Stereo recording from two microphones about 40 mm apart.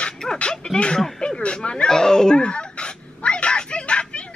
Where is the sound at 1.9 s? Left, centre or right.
Centre.